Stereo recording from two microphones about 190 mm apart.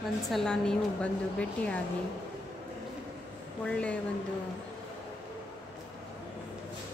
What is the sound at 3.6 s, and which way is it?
Speech, 5° left (ahead or behind).